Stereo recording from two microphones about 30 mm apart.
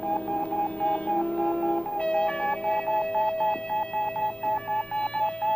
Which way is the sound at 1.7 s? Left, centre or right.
Left.